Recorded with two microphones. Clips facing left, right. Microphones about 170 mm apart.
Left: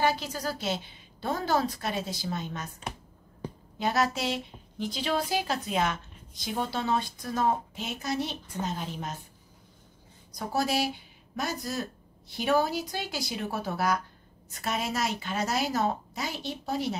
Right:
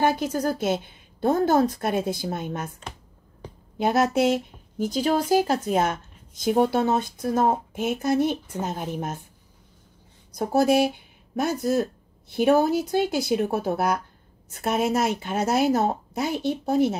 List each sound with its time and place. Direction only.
0.0 s speech: 50° right (ahead or behind)
3.7 s speech: 50° right (ahead or behind)
10.3 s speech: 50° right (ahead or behind)